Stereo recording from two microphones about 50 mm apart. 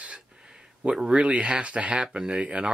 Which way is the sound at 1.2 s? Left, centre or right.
Right.